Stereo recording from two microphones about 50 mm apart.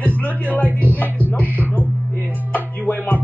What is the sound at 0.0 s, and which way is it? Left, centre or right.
Speech, left.